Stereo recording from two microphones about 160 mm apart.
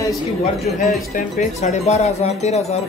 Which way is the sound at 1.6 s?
45° left (ahead or behind).